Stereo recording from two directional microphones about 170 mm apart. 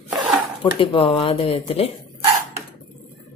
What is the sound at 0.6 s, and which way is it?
A woman's voice, 30° left (ahead or behind).